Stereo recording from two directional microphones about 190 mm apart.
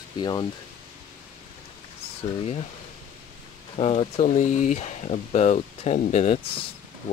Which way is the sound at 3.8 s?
35° left (ahead or behind).